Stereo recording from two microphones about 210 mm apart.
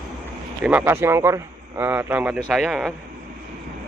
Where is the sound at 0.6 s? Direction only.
10° right (ahead or behind).